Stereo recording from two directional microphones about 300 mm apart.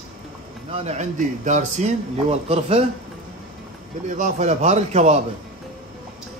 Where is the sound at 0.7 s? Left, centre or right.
Right.